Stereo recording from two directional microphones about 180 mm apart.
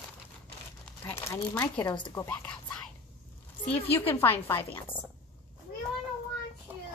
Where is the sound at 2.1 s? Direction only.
10° left (ahead or behind).